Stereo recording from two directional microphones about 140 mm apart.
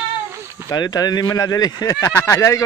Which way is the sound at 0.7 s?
30° left (ahead or behind).